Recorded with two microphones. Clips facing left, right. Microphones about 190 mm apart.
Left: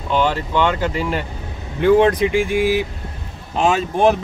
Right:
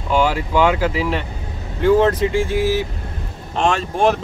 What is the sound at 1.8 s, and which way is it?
Speech, 15° left (ahead or behind).